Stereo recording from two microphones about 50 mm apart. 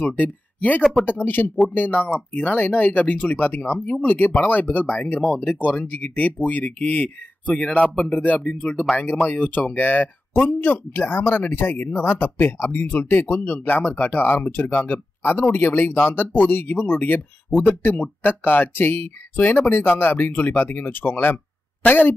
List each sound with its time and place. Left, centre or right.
0.0 s speech: left
5.2 s speech: left
5.5 s speech: left